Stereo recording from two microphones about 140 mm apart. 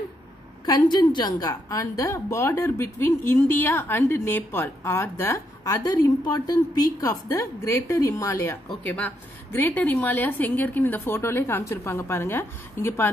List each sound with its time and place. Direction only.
0.7 s a woman's voice: 30° left (ahead or behind)
8.6 s a woman's voice: 10° left (ahead or behind)